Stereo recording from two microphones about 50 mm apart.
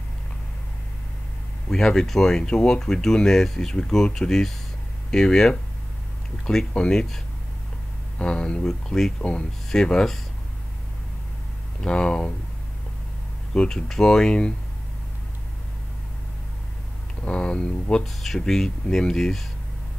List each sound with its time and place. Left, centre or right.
1.7 s speech: centre
8.2 s speech: centre
9.2 s speech: left
11.8 s speech: centre
13.5 s speech: centre
17.2 s speech: centre
18.0 s speech: centre